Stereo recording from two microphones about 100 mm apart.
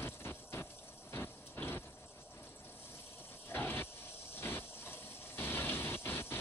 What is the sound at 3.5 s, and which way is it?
Vehicle, 20° left (ahead or behind).